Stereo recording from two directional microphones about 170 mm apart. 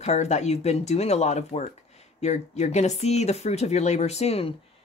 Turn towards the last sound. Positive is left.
turn(degrees=35)  # may be behind; listen again after turning